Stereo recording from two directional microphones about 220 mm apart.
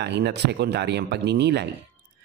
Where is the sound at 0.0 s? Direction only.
50° right (ahead or behind).